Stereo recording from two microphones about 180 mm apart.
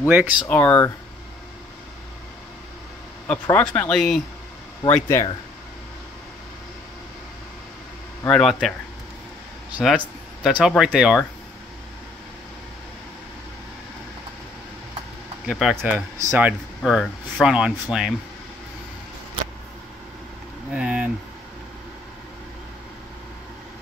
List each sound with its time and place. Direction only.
0.0 s speech: 10° right (ahead or behind)
0.5 s speech: 10° left (ahead or behind)
3.3 s speech: 10° left (ahead or behind)
5.0 s speech: 20° left (ahead or behind)
8.3 s speech: 5° left (ahead or behind)
9.9 s speech: centre (ahead or behind)
15.4 s speech: centre (ahead or behind)
15.8 s speech: 10° right (ahead or behind)
20.7 s speech: 5° right (ahead or behind)